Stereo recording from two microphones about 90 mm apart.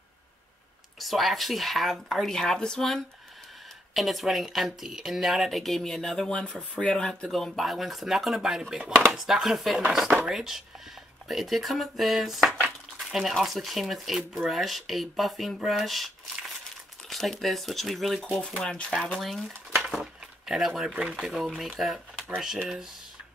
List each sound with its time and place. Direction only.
0.9 s speech: centre (ahead or behind)
12.5 s dishes: 20° right (ahead or behind)
13.0 s speech: centre (ahead or behind)
18.6 s speech: 10° left (ahead or behind)
19.1 s dishes: centre (ahead or behind)
21.1 s speech: centre (ahead or behind)